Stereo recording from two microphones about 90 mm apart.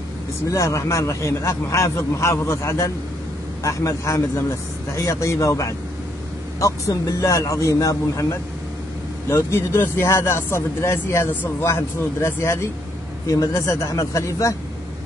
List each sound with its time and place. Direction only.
0.5 s speech: 35° left (ahead or behind)